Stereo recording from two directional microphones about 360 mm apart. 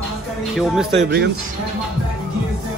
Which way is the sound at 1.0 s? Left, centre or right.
Right.